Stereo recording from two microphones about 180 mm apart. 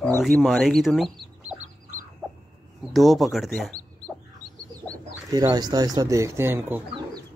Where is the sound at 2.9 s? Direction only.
Centre (ahead or behind).